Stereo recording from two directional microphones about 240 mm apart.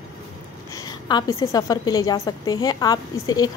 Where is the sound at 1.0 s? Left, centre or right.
Centre.